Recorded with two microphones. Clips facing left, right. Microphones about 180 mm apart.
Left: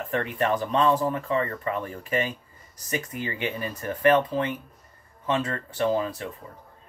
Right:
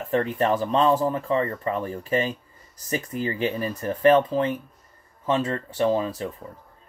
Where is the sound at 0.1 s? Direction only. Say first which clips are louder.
Right 4 dB; 30° right (ahead or behind).